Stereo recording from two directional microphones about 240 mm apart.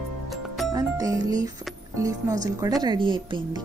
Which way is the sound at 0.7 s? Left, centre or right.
Centre.